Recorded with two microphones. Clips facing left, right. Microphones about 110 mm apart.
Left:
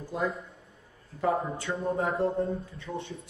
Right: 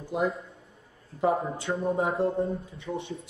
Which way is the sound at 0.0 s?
20° right (ahead or behind).